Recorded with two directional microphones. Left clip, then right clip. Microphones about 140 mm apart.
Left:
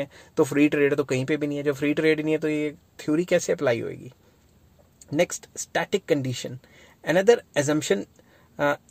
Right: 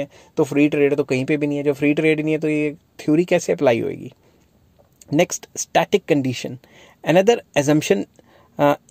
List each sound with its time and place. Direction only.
0.0 s speech: 15° right (ahead or behind); by 8.8 s 45° right (ahead or behind)